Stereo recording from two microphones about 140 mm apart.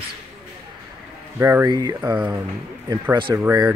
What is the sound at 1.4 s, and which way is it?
Speech, 20° right (ahead or behind).